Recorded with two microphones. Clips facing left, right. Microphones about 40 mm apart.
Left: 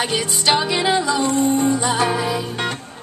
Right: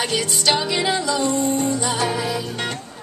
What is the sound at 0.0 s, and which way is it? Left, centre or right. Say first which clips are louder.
Music: left 1 dB; centre.